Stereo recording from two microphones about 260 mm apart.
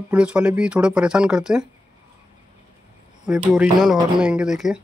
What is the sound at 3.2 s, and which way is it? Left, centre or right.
Speech, centre.